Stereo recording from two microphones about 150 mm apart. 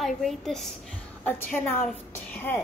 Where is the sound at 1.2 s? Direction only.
15° left (ahead or behind).